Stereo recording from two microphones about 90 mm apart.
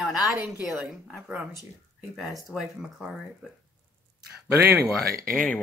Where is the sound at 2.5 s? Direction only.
5° right (ahead or behind).